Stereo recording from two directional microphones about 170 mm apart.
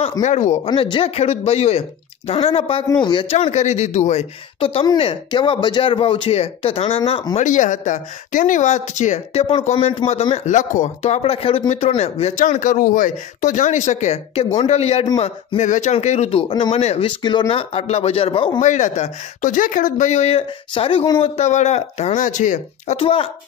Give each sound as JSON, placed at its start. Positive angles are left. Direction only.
{"t": 0.2, "sound": "speech", "side_deg": 45}
{"t": 0.7, "sound": "speech", "side_deg": 30}
{"t": 7.4, "sound": "speech", "side_deg": 50}
{"t": 18.6, "sound": "speech", "side_deg": 45}
{"t": 22.9, "sound": "speech", "side_deg": 30}